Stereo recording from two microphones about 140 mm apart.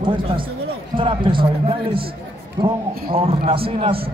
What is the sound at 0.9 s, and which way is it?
A man's voice, 35° right (ahead or behind).